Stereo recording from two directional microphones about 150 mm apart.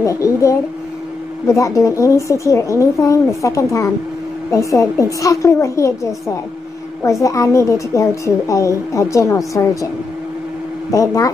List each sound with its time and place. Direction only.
0.0 s a woman's voice: 20° left (ahead or behind)
10.9 s a woman's voice: 25° left (ahead or behind)